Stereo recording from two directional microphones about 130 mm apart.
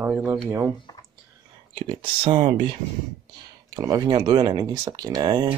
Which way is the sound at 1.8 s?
45° right (ahead or behind).